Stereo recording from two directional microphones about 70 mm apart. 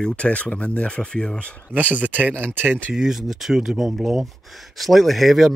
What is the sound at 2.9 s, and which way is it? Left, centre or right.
Speech, centre.